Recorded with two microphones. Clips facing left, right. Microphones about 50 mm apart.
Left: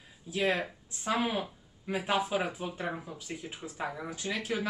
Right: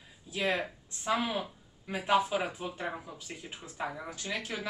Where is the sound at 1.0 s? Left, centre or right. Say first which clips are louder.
Left 1 dB; left; by 4.1 s centre.